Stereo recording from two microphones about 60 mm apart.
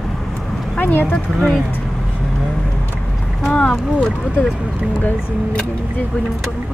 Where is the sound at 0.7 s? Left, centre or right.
Left.